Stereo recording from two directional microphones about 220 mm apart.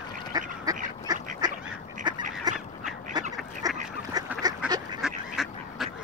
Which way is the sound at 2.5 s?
20° right (ahead or behind).